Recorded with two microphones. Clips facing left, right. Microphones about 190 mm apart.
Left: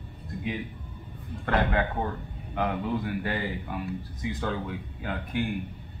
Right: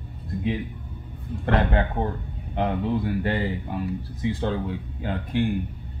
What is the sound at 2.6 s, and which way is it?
A man's voice, 30° right (ahead or behind).